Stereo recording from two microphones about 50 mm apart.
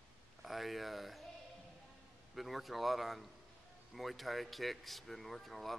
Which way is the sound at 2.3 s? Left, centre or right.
Centre.